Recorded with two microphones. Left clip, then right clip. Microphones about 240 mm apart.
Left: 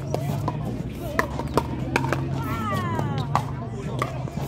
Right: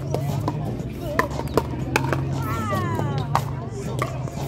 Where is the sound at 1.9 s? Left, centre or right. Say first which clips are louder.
Right 2 dB; right.